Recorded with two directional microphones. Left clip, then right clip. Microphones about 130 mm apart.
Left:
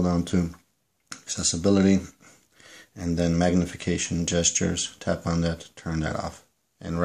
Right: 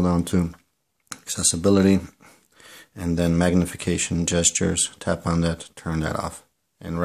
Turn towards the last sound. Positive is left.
turn(degrees=-20)  # may be behind; listen again after turning